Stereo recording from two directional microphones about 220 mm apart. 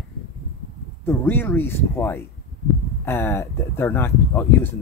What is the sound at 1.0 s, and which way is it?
Speech, 10° left (ahead or behind).